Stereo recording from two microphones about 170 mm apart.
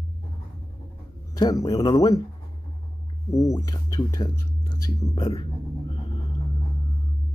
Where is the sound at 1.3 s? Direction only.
20° left (ahead or behind).